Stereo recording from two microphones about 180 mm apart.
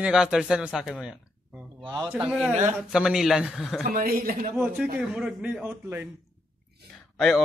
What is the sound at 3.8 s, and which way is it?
Speech, 55° right (ahead or behind).